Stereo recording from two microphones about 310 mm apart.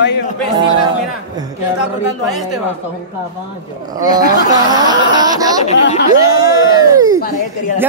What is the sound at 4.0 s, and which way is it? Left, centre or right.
Speech, centre.